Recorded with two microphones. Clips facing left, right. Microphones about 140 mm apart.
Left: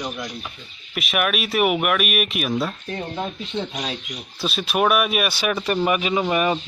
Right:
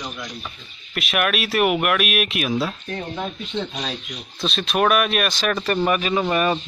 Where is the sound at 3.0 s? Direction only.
15° left (ahead or behind).